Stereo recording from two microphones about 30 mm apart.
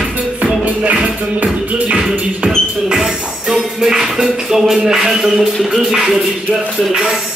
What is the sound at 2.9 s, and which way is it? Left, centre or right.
Music, centre.